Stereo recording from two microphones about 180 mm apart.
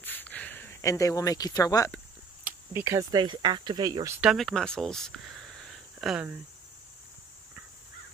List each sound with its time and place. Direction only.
0.0 s a sound: 10° left (ahead or behind)
2.4 s speech: 15° right (ahead or behind)
4.2 s speech: centre (ahead or behind)